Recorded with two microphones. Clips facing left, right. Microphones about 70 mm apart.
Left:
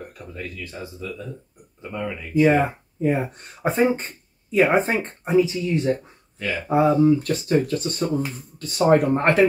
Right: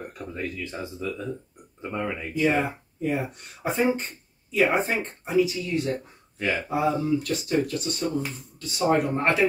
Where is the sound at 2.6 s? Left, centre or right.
Left.